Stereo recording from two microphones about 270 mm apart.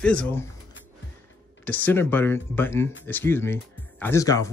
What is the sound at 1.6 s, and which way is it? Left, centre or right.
Speech, centre.